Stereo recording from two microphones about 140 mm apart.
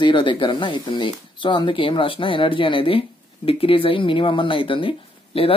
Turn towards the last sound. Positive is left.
turn(degrees=40)  # may be behind; listen again after turning